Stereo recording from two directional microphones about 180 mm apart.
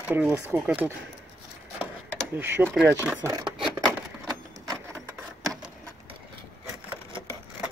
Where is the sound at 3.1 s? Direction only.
20° right (ahead or behind).